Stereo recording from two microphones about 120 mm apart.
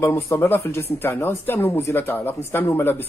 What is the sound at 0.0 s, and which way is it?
Speech, 20° left (ahead or behind).